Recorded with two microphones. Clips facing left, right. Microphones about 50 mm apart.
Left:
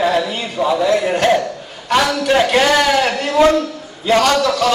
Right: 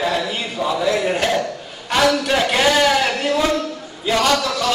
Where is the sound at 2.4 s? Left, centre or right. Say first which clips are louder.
Left 1 dB; centre.